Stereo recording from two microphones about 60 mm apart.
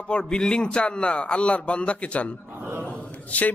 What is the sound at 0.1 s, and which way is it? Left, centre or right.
A man's voice, centre.